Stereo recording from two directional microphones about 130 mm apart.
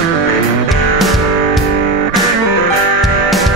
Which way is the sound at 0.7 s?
Centre (ahead or behind).